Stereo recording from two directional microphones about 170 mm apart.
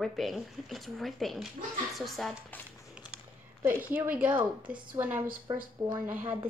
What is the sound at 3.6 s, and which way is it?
A woman's voice, 10° right (ahead or behind).